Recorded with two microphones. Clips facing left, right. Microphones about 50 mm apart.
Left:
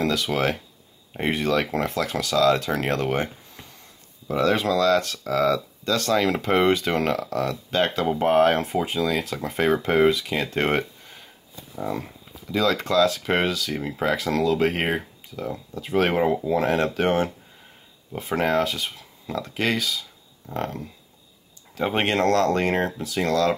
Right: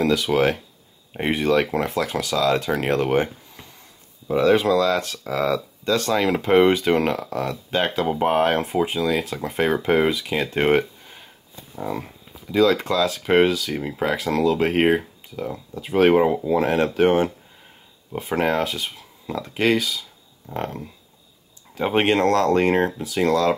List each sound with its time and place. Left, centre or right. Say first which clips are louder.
0.0 s speech: right 4 dB; centre
4.3 s speech: right 4 dB; centre